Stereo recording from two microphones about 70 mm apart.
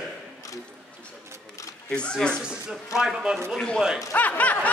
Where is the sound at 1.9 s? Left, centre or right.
Centre.